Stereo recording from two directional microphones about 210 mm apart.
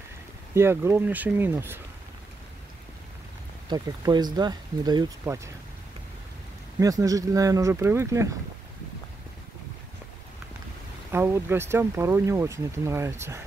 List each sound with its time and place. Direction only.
0.6 s speech: 10° right (ahead or behind)
3.6 s speech: 20° right (ahead or behind)
6.8 s speech: 15° right (ahead or behind)
11.1 s speech: 10° right (ahead or behind)